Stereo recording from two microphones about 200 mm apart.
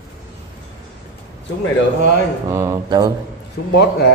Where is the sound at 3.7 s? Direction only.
55° left (ahead or behind).